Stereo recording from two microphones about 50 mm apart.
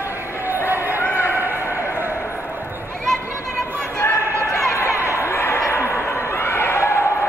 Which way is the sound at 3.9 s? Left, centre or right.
Left.